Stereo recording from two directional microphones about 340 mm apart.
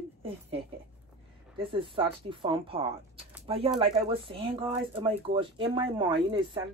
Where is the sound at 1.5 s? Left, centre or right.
Centre.